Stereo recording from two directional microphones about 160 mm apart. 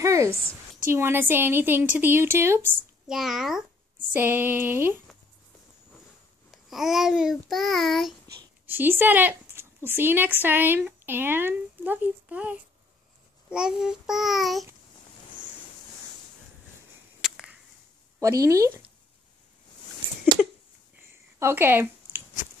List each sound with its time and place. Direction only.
0.0 s a sound: 20° right (ahead or behind)
0.8 s a woman's voice: 15° right (ahead or behind)
3.1 s a child's voice: centre (ahead or behind)
6.5 s a child's voice: centre (ahead or behind)
8.6 s a woman's voice: 10° right (ahead or behind)
17.2 s a sound: centre (ahead or behind)
18.4 s speech: 20° right (ahead or behind)
21.4 s speech: 15° right (ahead or behind)